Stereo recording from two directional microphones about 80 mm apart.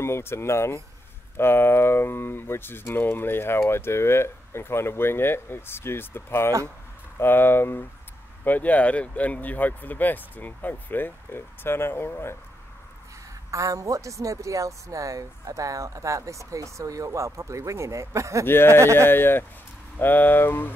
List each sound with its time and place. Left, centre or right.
0.0 s speech: left
13.5 s speech: right
18.4 s speech: left
18.7 s speech: right
19.0 s speech: left